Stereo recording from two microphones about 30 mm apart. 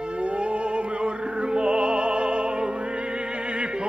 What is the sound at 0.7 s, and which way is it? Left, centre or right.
Music, right.